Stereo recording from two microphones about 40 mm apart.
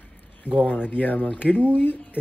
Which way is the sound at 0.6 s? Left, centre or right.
Left.